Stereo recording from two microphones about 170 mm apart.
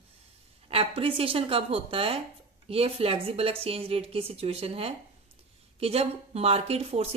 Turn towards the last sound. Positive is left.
turn(degrees=-35)  # may be behind; listen again after turning